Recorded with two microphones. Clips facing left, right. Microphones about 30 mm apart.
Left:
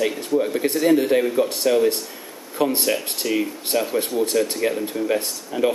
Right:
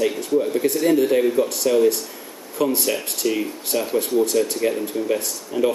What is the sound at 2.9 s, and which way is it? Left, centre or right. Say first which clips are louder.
Speech: even; centre.